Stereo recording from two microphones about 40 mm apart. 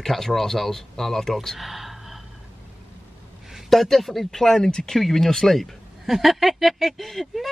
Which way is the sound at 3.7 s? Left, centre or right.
Centre.